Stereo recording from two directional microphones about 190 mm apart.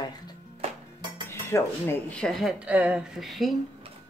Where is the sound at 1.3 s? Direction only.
15° left (ahead or behind).